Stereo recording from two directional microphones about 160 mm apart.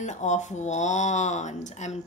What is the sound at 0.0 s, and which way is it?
Speech, 50° left (ahead or behind).